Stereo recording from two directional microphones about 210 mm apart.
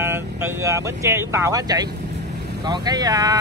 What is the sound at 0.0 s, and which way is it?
Speech, 10° right (ahead or behind).